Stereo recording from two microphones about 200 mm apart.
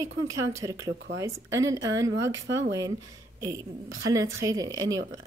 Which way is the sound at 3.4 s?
15° right (ahead or behind).